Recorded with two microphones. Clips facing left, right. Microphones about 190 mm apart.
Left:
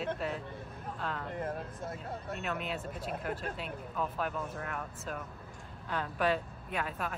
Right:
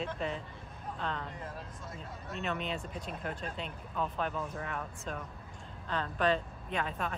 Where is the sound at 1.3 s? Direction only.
55° left (ahead or behind).